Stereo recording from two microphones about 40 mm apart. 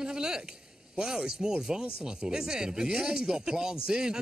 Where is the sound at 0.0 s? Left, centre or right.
Centre.